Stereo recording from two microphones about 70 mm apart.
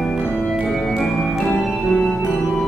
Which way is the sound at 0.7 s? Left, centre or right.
Centre.